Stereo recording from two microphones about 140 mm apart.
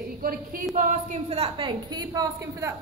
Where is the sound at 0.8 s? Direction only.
60° right (ahead or behind).